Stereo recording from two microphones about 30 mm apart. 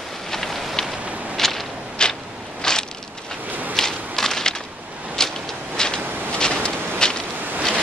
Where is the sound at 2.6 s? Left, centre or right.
Left.